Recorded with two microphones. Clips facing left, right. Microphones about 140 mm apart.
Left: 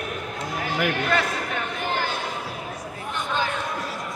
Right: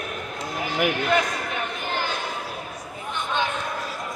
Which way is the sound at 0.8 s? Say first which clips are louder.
Right 2 dB; 15° right (ahead or behind).